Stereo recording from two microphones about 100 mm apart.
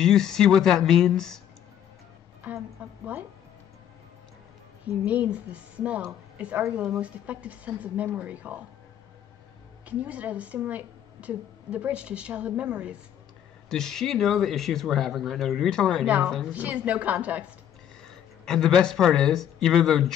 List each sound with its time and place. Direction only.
0.0 s speech: 5° left (ahead or behind)
2.4 s a woman's voice: 15° right (ahead or behind)
5.0 s a woman's voice: 15° right (ahead or behind)
9.8 s a woman's voice: 15° right (ahead or behind)
13.7 s speech: 5° left (ahead or behind)
16.5 s a woman's voice: 15° right (ahead or behind)
18.0 s speech: 5° left (ahead or behind)